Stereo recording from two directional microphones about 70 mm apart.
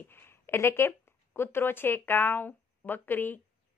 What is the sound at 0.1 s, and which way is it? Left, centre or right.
A woman's voice, left.